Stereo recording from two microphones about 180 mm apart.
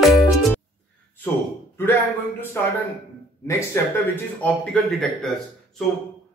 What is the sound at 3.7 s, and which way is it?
A man's voice, 15° left (ahead or behind).